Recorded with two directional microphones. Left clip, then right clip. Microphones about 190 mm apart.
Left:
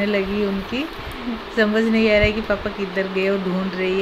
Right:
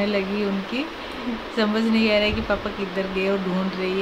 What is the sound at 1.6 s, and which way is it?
Speech, 10° left (ahead or behind).